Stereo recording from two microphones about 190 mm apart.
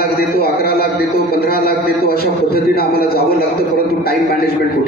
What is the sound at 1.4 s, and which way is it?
A man's voice, 50° left (ahead or behind).